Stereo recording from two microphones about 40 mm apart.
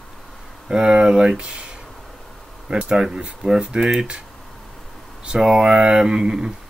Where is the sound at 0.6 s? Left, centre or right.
Right.